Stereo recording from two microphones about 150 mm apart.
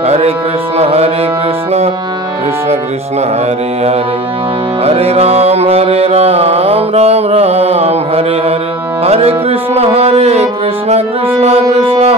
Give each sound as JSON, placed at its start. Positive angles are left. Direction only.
{"t": 0.0, "sound": "carnatic music", "side_deg": -45}
{"t": 0.7, "sound": "music", "side_deg": -40}
{"t": 4.8, "sound": "music", "side_deg": -45}